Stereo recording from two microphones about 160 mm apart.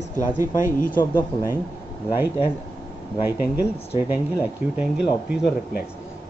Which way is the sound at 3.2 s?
15° right (ahead or behind).